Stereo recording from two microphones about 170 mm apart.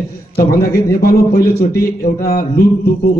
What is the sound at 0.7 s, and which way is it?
A man's voice, 60° left (ahead or behind).